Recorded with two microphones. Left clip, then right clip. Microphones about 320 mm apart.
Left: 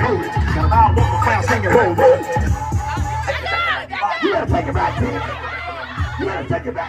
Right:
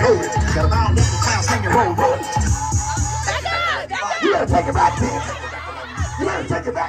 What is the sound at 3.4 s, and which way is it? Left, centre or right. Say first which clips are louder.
Music: left 2 dB; right.